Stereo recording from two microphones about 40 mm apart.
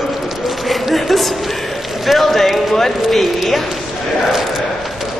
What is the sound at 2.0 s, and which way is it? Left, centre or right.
Speech, centre.